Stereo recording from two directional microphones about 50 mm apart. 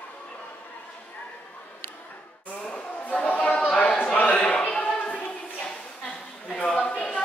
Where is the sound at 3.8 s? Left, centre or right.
Left.